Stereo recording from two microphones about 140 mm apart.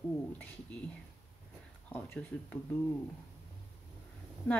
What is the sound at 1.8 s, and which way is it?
Speech, 10° left (ahead or behind).